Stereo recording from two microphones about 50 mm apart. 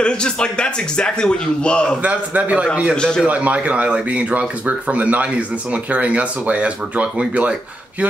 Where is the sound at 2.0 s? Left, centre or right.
Right.